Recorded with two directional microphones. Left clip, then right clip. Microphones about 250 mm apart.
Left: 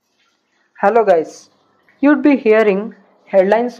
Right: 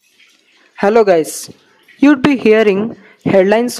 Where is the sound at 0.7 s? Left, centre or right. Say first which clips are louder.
Right 2 dB; right.